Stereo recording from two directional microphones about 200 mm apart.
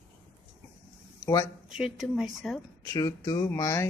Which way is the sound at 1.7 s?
Centre (ahead or behind).